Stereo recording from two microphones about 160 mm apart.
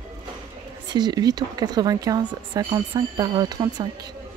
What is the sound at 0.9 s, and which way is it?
Speech, 25° right (ahead or behind).